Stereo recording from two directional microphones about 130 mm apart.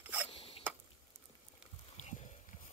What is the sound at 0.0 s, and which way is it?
Zipper, 10° right (ahead or behind).